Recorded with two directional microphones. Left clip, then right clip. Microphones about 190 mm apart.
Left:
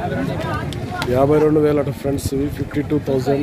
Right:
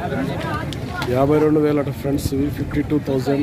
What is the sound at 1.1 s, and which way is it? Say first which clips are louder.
Speech: left 2 dB; centre (ahead or behind).